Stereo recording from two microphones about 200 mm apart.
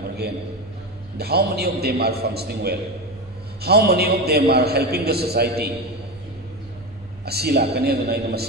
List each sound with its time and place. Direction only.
1.1 s a man's voice: 50° right (ahead or behind)
7.2 s a man's voice: 50° right (ahead or behind)